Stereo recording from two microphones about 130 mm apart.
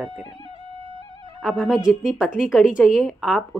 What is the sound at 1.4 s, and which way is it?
Speech, centre (ahead or behind).